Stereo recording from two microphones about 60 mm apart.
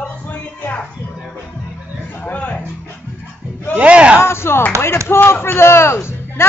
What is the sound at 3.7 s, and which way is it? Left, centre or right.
Speech, centre.